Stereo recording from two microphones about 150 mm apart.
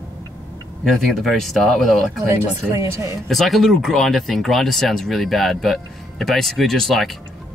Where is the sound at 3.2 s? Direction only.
Centre (ahead or behind).